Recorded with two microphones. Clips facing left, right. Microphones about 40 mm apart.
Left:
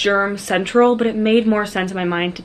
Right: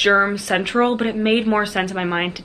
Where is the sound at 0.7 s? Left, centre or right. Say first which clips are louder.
Left 6 dB; centre.